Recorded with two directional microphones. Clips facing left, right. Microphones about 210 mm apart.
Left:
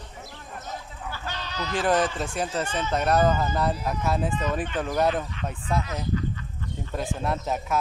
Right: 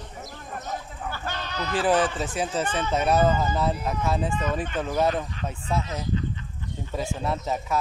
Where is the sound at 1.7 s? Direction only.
30° right (ahead or behind).